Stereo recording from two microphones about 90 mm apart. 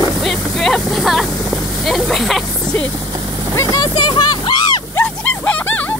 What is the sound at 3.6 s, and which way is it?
Vehicle, 45° left (ahead or behind).